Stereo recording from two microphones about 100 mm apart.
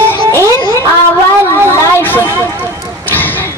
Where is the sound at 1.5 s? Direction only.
20° left (ahead or behind).